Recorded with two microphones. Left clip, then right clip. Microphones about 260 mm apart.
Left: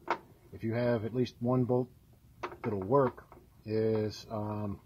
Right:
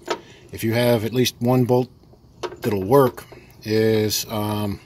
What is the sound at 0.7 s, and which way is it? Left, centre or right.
Speech, right.